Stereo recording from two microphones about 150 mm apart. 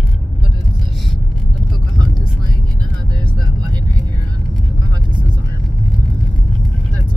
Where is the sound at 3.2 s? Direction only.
30° right (ahead or behind).